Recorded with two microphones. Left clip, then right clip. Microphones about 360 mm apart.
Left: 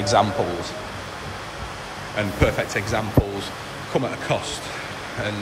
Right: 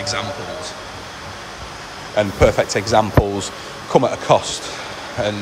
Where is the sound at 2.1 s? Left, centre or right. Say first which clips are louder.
Right 7 dB; centre.